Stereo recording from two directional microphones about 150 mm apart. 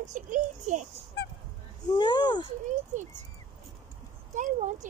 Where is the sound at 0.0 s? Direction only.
55° right (ahead or behind).